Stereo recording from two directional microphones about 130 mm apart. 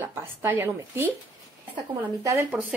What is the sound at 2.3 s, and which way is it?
Speech, 20° right (ahead or behind).